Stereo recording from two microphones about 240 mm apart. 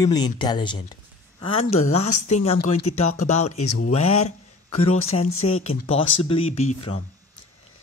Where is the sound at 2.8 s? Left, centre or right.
Left.